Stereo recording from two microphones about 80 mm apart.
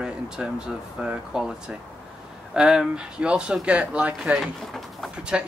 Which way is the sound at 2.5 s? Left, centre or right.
Centre.